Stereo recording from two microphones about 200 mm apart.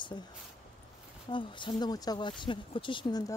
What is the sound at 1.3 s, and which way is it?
Speech, 25° left (ahead or behind).